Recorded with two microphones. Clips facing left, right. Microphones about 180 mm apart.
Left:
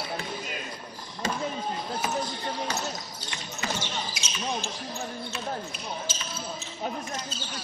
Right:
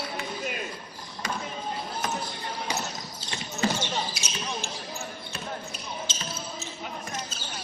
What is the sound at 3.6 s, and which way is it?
Rodents, 30° right (ahead or behind).